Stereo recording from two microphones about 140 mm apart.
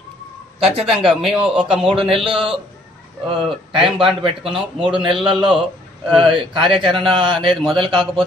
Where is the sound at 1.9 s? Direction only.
40° right (ahead or behind).